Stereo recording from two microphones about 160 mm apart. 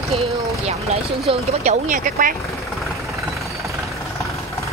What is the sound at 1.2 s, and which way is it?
Speech, 45° right (ahead or behind).